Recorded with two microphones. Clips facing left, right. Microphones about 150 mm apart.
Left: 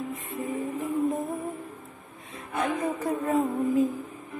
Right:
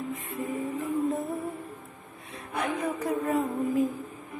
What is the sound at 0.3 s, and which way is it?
Music, 15° left (ahead or behind).